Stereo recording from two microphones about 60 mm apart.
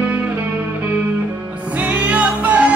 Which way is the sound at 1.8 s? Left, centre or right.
Right.